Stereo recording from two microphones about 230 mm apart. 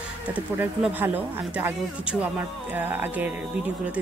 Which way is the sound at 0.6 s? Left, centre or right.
Centre.